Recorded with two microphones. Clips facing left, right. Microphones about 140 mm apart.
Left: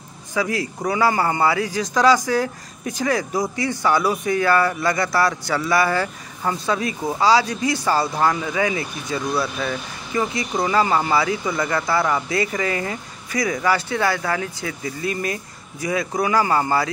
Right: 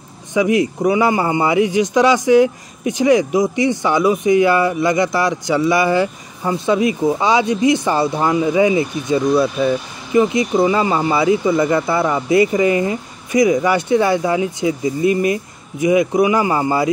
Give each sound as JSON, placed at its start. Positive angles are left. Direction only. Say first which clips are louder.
{"t": 0.3, "sound": "speech", "louder": "right 8 dB", "side_deg": -20}